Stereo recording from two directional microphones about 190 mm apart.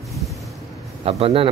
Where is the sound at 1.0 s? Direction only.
30° right (ahead or behind).